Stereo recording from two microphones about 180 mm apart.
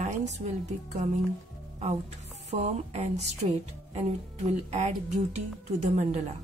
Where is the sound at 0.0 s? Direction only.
40° right (ahead or behind).